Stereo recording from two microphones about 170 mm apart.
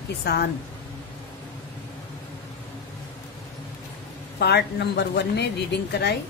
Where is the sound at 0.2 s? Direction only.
70° left (ahead or behind).